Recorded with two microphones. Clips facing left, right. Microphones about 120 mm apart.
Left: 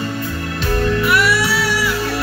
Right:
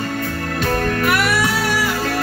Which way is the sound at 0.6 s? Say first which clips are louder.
Left 1 dB; 55° right (ahead or behind).